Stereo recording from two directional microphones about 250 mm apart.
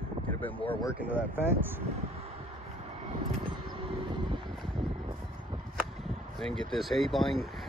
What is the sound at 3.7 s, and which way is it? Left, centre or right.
Vehicle, centre.